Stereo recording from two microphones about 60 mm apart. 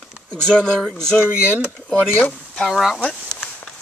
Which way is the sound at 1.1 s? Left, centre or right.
Left.